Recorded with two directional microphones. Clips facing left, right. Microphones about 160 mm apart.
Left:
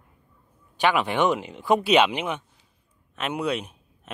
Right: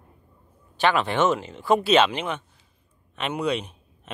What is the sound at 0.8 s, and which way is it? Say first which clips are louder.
Speech: even; 15° left (ahead or behind).